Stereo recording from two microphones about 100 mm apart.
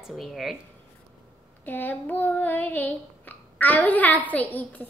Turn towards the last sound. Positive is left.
turn(degrees=15)  # may be behind; listen again after turning